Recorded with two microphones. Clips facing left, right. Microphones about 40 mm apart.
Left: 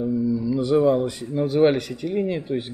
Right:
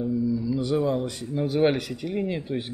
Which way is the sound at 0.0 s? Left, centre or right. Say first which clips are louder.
Left 3 dB; centre.